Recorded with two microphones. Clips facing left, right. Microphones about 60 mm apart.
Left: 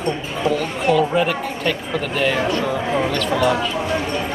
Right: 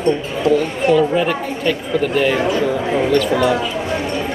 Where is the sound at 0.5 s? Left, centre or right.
Centre.